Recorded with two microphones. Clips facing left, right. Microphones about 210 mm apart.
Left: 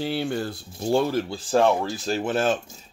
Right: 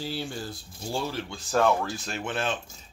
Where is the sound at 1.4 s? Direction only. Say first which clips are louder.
Left 2 dB; 30° left (ahead or behind).